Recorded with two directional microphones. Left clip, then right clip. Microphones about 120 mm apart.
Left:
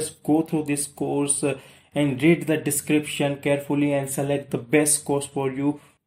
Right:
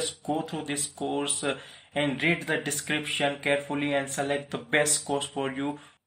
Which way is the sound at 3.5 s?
45° left (ahead or behind).